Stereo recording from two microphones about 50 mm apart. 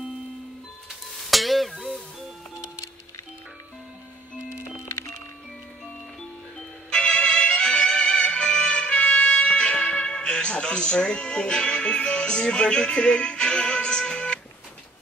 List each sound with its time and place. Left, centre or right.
1.3 s a sound: centre
4.6 s music: left
6.9 s music: centre